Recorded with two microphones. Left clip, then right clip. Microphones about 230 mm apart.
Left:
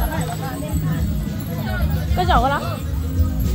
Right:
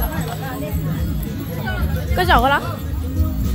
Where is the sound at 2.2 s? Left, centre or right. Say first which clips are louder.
Right 3 dB; right.